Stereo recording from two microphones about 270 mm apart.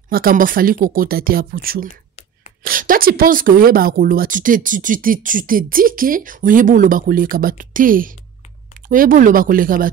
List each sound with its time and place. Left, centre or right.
0.1 s speech: right